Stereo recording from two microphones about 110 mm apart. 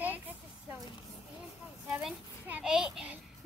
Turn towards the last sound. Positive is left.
turn(degrees=-5)  # may be behind; listen again after turning